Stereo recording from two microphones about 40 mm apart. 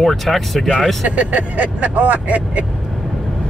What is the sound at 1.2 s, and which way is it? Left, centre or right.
Speech, right.